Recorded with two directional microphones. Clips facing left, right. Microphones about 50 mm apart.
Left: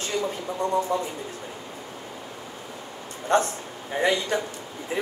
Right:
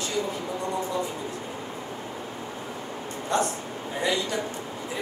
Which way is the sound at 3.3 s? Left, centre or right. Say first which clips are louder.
Left 4 dB; left.